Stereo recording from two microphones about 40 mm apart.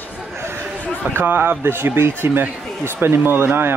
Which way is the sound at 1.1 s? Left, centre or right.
Right.